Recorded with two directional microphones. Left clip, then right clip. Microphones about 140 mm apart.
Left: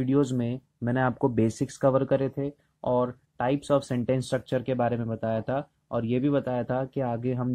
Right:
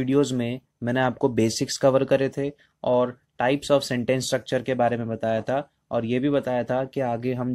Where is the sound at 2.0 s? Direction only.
45° right (ahead or behind).